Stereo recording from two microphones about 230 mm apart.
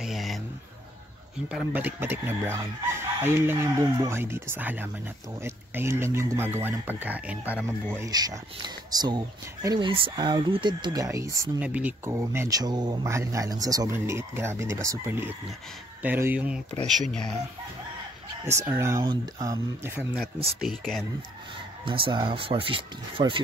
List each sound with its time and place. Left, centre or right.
0.0 s music: centre
1.5 s speech: centre
18.7 s speech: centre
21.8 s speech: right